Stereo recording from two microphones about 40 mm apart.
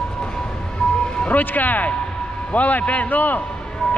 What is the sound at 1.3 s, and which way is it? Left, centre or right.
A man's voice, left.